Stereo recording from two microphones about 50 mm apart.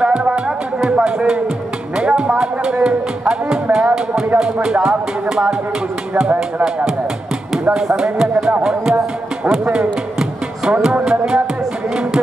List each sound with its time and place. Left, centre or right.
0.0 s music: centre
4.4 s speech: centre
7.7 s speech: centre